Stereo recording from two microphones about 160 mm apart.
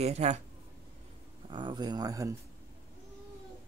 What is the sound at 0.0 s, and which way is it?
Speech, 45° right (ahead or behind).